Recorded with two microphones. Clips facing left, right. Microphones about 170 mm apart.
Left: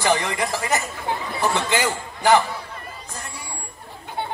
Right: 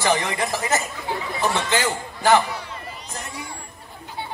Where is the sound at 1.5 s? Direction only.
15° left (ahead or behind).